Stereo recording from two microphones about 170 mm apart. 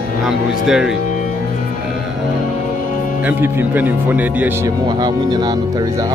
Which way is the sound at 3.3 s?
10° right (ahead or behind).